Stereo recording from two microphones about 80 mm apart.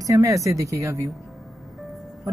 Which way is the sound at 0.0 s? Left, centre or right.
Right.